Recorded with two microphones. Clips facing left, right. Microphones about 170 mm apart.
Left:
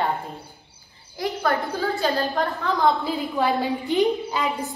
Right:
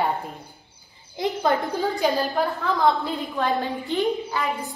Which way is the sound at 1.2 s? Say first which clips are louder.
Right 1 dB; 20° right (ahead or behind).